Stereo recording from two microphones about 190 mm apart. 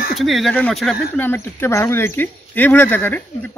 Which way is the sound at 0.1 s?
Centre (ahead or behind).